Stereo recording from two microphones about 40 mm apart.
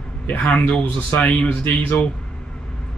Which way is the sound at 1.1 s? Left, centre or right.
Left.